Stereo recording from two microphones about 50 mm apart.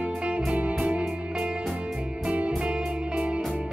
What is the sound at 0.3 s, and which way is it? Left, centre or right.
Music, right.